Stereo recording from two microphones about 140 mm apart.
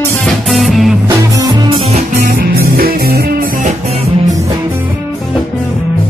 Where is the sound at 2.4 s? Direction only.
90° right.